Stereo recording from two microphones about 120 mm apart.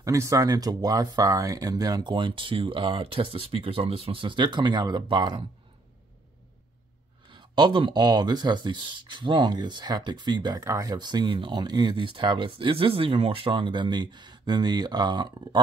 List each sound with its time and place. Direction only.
0.0 s speech: 25° right (ahead or behind)
7.2 s speech: 40° right (ahead or behind)